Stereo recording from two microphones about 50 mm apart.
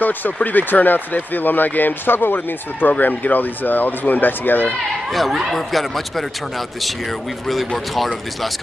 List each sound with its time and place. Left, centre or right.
0.0 s speech: left
5.1 s speech: centre
7.9 s speech: centre